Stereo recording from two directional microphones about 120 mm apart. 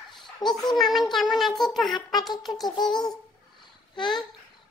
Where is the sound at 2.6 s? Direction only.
35° left (ahead or behind).